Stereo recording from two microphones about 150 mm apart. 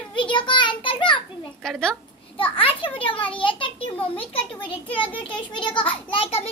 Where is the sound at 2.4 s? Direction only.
35° left (ahead or behind).